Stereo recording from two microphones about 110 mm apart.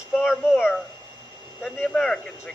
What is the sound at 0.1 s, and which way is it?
Speech, centre (ahead or behind).